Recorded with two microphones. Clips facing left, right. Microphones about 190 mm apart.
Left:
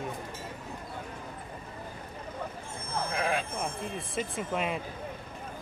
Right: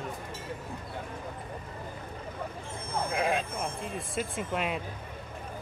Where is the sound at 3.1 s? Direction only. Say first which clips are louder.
Right 2 dB; 25° right (ahead or behind).